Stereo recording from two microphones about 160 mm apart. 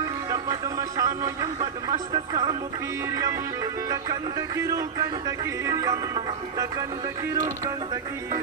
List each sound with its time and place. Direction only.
0.3 s a sound: 20° right (ahead or behind)
1.9 s music: 25° right (ahead or behind)
3.9 s music: 20° right (ahead or behind)
7.3 s music: 20° right (ahead or behind)